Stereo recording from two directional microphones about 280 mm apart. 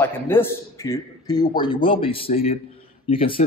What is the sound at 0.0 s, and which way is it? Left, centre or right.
A man's voice, centre.